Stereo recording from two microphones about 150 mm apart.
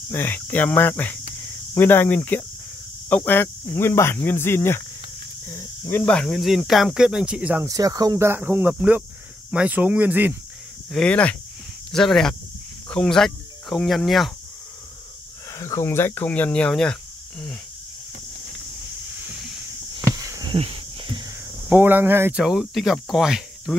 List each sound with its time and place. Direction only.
0.1 s speech: 15° left (ahead or behind); by 7.6 s 10° right (ahead or behind)
7.6 s speech: 25° right (ahead or behind)
10.9 s speech: 5° left (ahead or behind)
15.5 s speech: 20° left (ahead or behind)
20.2 s a sound: 25° right (ahead or behind)
21.6 s speech: 15° right (ahead or behind)
22.4 s speech: centre (ahead or behind)